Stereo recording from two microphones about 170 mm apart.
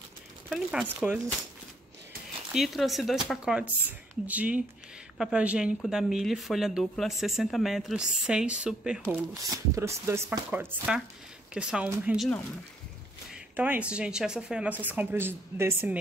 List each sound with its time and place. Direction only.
0.5 s speech: 5° right (ahead or behind)
2.5 s speech: centre (ahead or behind)
9.4 s speech: 15° right (ahead or behind)
13.3 s speech: 10° right (ahead or behind)